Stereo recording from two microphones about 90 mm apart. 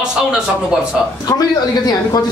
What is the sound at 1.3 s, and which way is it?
Speech, 45° left (ahead or behind).